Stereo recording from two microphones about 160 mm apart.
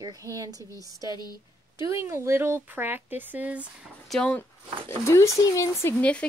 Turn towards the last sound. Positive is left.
turn(degrees=10)  # may be behind; listen again after turning